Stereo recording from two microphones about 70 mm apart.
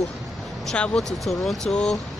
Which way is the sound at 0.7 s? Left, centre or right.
Centre.